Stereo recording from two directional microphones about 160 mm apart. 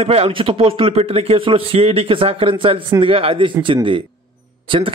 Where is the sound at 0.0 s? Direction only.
40° right (ahead or behind).